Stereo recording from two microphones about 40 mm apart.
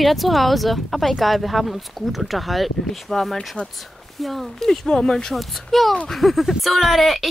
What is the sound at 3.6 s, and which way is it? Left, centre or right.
Speech, left.